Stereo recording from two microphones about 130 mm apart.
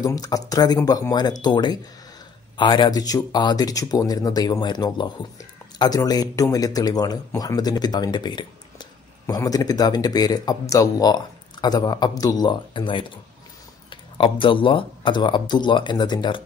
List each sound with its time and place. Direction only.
0.0 s speech: 30° left (ahead or behind)